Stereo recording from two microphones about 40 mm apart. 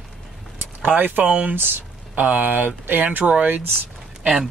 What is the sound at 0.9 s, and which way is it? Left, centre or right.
Speech, right.